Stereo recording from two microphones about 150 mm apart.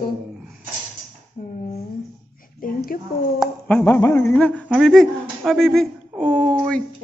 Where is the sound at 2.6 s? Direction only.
75° left (ahead or behind).